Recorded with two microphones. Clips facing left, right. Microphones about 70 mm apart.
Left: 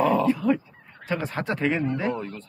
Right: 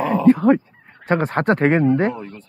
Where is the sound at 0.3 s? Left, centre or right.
Right.